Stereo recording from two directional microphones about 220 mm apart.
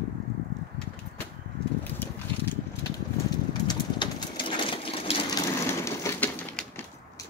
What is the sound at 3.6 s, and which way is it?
Sewing machine, 20° left (ahead or behind).